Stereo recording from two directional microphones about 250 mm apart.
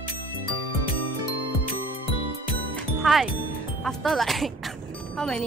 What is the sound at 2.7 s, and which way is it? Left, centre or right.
Music, centre.